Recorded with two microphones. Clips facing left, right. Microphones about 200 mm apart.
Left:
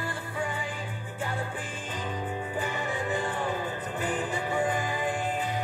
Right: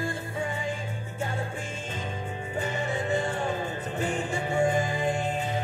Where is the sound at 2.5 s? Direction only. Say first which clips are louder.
Right 5 dB; 25° right (ahead or behind).